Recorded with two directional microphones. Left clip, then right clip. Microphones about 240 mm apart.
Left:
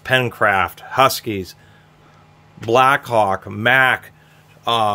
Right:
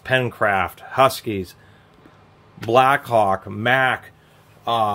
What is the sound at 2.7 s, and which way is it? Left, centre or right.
Speech, left.